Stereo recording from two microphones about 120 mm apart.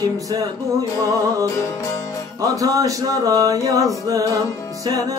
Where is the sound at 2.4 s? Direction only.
30° right (ahead or behind).